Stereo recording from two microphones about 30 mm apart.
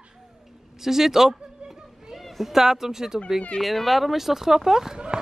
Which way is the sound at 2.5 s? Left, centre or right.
Centre.